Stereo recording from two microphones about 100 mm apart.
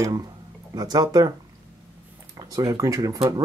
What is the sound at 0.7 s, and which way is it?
Speech, 40° right (ahead or behind).